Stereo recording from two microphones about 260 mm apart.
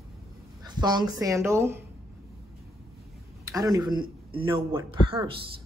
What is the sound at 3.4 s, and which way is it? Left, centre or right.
Speech, centre.